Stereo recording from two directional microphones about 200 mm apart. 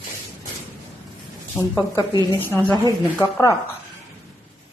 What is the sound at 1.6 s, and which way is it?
Speech, 15° left (ahead or behind).